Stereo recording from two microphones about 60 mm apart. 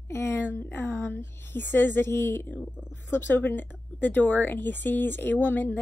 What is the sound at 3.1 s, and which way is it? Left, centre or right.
A woman's voice, left.